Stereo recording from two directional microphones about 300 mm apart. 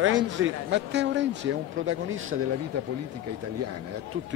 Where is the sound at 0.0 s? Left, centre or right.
Right.